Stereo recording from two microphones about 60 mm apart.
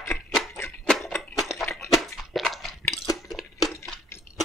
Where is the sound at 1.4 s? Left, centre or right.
Centre.